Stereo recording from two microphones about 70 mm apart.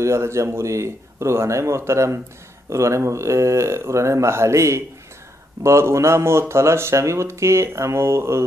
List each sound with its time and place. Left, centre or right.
0.0 s speech: right